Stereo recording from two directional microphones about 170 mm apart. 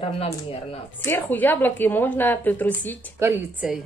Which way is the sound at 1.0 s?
10° left (ahead or behind).